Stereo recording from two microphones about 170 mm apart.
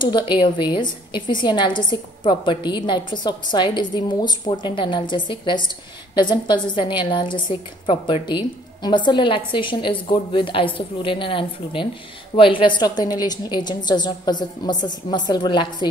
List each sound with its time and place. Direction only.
0.3 s a woman's voice: 25° left (ahead or behind)